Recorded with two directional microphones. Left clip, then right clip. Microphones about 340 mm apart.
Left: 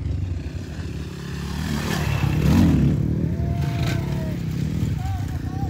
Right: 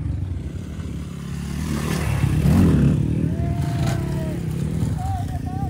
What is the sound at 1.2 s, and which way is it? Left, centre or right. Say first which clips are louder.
Vehicle: left 1 dB; centre.